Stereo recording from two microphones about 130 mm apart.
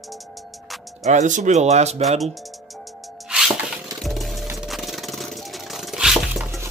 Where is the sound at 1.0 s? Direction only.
70° right (ahead or behind).